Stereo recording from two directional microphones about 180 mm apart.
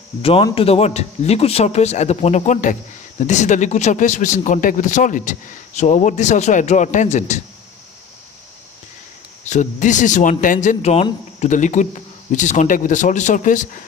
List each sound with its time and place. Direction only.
0.2 s a man's voice: 30° left (ahead or behind)
9.5 s a man's voice: 45° left (ahead or behind)